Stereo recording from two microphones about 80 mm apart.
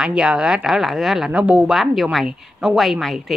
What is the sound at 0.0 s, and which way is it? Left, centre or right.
Speech, centre.